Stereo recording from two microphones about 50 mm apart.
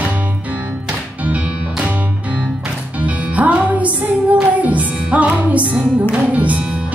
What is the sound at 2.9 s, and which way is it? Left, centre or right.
Music, right.